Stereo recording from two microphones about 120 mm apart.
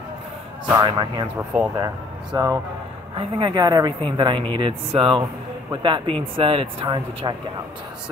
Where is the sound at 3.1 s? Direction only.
45° right (ahead or behind).